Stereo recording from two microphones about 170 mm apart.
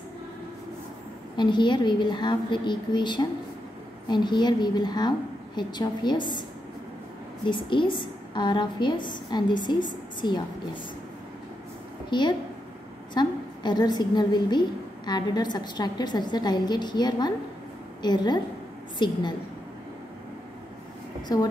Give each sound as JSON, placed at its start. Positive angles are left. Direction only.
{"t": 1.3, "sound": "a woman's voice", "side_deg": 25}
{"t": 7.4, "sound": "a woman's voice", "side_deg": 30}
{"t": 12.1, "sound": "a woman's voice", "side_deg": 25}
{"t": 21.3, "sound": "a woman's voice", "side_deg": 20}